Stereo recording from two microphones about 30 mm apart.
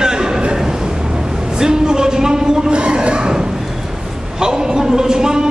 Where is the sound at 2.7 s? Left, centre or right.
Right.